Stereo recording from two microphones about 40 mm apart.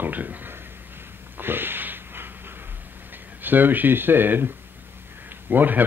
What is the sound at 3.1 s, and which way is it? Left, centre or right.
Speech, right.